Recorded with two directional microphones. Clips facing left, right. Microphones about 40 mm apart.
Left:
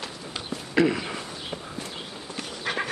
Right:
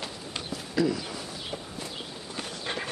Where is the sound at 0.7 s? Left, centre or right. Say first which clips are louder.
Left 5 dB; left.